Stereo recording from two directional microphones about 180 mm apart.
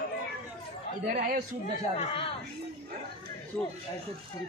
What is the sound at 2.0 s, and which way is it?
Speech, 30° left (ahead or behind).